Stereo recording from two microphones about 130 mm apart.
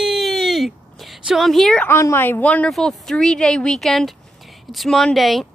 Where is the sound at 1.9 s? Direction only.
20° left (ahead or behind).